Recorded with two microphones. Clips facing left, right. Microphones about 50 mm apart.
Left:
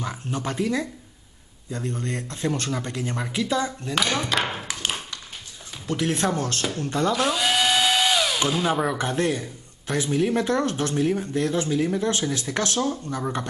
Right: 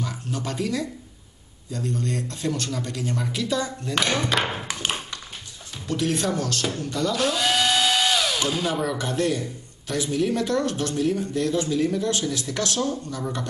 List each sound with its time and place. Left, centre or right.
0.0 s speech: left
3.9 s speech: centre
4.3 s a sound: centre
4.7 s tap: centre
5.9 s a man's voice: left
7.2 s drill: centre
8.4 s speech: centre